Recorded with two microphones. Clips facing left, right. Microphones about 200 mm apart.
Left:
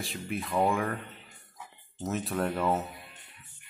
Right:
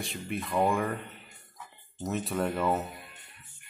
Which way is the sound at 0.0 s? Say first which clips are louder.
Even; centre (ahead or behind).